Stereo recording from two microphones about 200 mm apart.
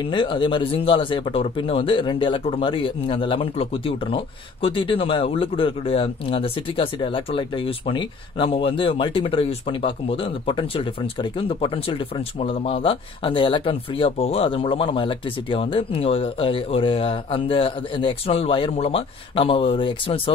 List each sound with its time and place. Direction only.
0.0 s speech: 25° left (ahead or behind)